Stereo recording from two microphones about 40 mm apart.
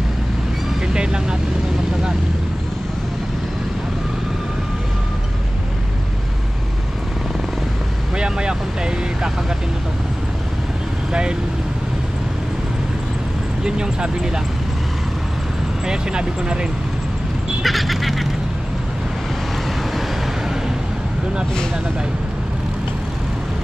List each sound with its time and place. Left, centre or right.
0.9 s vehicle: right
8.2 s vehicle: right
13.7 s vehicle: right
15.9 s speech: right
17.6 s duck: centre